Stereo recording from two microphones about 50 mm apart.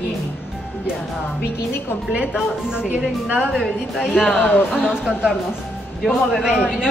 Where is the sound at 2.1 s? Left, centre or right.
Centre.